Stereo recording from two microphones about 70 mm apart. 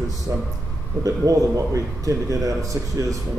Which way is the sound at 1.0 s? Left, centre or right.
Right.